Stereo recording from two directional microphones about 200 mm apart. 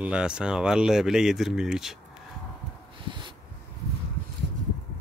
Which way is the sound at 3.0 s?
25° right (ahead or behind).